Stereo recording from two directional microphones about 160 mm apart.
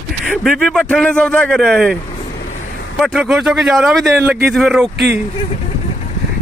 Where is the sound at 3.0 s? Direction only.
5° right (ahead or behind).